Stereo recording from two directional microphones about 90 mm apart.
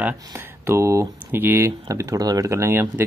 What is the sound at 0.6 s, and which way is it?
Speech, 35° right (ahead or behind).